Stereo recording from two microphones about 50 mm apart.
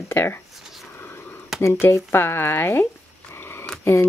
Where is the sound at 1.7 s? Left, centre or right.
Left.